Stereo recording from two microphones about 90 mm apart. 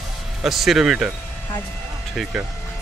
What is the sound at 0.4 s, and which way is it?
Speech, 5° right (ahead or behind).